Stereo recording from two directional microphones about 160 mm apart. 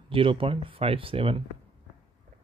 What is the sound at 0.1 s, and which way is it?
Speech, 35° right (ahead or behind).